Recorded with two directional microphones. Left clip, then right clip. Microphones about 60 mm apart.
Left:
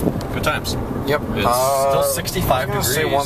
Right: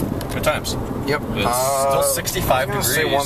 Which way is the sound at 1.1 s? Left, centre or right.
Centre.